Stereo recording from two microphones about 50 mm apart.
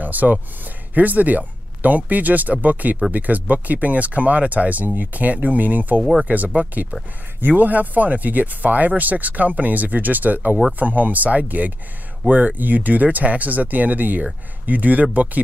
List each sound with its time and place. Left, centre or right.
0.0 s speech: right